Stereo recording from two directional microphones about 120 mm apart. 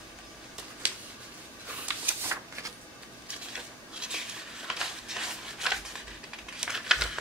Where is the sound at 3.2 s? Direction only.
10° right (ahead or behind).